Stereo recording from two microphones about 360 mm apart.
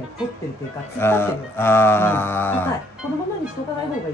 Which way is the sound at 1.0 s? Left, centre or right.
Centre.